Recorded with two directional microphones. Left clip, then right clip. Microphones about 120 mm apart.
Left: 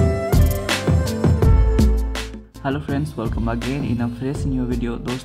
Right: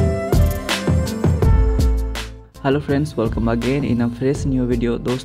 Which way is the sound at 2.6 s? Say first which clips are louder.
Right 5 dB; 55° right (ahead or behind).